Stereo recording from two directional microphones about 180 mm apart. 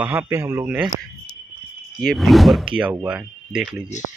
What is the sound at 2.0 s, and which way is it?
Speech, centre (ahead or behind).